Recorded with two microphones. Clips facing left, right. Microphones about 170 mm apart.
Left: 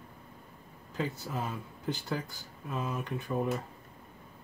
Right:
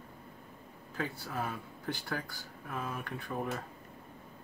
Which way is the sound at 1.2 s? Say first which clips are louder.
Left 1 dB; 20° left (ahead or behind).